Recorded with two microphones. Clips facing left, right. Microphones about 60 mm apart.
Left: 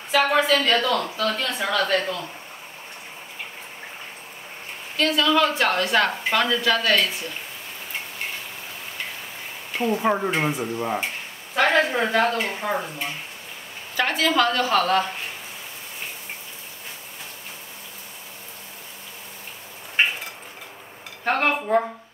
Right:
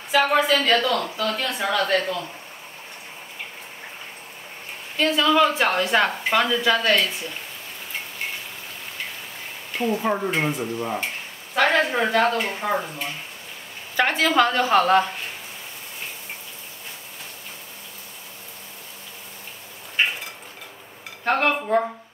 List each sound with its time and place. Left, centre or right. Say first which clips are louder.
0.1 s speech: even; centre
1.6 s speech: right 1 dB; centre
4.9 s speech: right 1 dB; centre
9.7 s speech: left 1 dB; centre
11.8 s speech: right 1 dB; centre
13.9 s a woman's voice: right 2 dB; right
21.2 s speech: right 1 dB; centre